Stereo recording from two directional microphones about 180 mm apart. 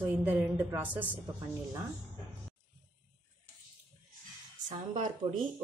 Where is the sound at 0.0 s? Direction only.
10° right (ahead or behind).